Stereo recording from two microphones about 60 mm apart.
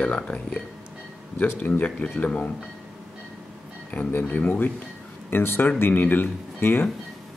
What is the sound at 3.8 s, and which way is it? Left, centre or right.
Speech, left.